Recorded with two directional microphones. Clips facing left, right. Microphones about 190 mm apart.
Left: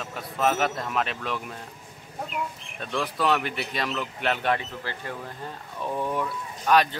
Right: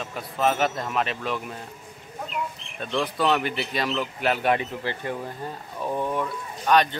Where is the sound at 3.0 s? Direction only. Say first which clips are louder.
Right 2 dB; centre (ahead or behind); by 5.3 s 20° right (ahead or behind).